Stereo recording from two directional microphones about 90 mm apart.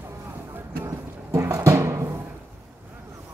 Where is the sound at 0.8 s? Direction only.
40° right (ahead or behind).